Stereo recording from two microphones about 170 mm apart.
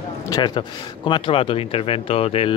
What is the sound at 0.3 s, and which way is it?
Speech, 25° left (ahead or behind).